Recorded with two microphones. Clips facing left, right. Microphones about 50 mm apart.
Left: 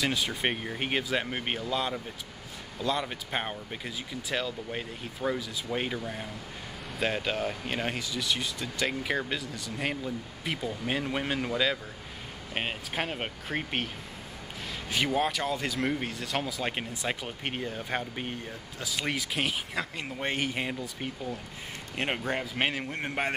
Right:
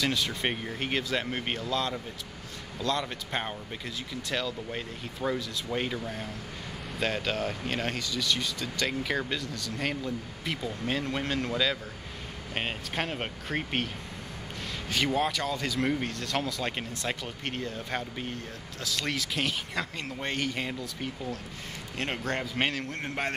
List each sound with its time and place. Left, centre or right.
0.0 s speech: centre
14.9 s speech: centre
22.3 s speech: centre